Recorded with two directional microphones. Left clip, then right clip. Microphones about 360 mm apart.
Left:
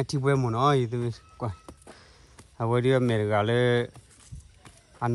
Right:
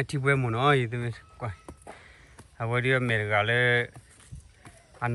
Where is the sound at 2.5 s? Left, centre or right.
Centre.